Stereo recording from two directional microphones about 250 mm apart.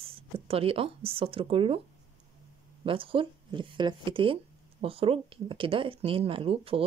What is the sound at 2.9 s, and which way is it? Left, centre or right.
Speech, right.